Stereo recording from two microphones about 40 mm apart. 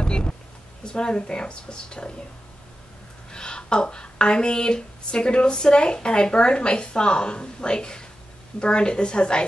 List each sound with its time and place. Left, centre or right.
0.0 s a sound: left
0.8 s speech: left
3.3 s speech: left